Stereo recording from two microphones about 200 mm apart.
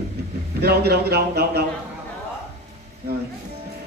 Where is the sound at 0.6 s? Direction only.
55° right (ahead or behind).